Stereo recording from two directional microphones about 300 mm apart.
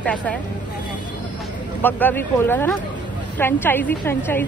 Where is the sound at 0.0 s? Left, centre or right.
Centre.